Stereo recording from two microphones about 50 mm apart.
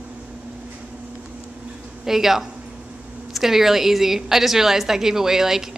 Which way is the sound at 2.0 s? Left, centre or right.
Centre.